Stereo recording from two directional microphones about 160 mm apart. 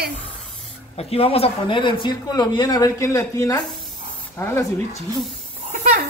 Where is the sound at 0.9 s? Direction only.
40° left (ahead or behind); by 4.6 s 15° left (ahead or behind).